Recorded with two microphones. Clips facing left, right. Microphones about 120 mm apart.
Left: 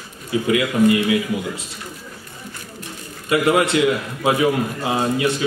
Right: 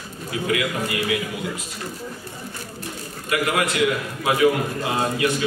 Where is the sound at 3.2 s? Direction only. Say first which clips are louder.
Left 6 dB; 30° left (ahead or behind).